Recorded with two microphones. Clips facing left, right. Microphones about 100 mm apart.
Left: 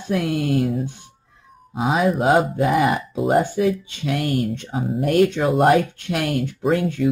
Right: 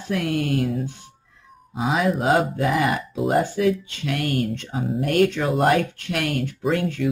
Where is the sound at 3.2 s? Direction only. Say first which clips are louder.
Left 2 dB; centre (ahead or behind).